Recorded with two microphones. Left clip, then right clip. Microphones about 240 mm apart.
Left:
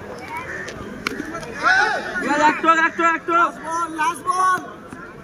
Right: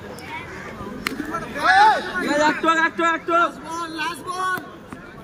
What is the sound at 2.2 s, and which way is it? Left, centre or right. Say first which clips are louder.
A man's voice: left 3 dB; centre.